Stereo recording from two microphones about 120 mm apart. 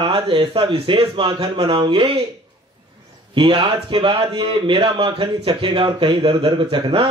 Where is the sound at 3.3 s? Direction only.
45° right (ahead or behind).